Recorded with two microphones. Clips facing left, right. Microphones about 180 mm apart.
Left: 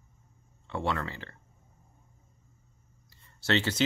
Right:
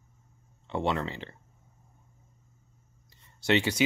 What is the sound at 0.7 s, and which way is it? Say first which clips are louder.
Speech: right 3 dB; 20° right (ahead or behind).